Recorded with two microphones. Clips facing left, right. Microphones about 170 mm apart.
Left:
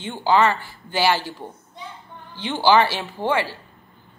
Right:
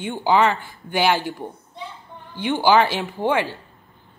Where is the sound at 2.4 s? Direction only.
15° right (ahead or behind).